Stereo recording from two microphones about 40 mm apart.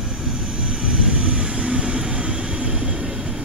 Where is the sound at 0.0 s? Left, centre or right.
Centre.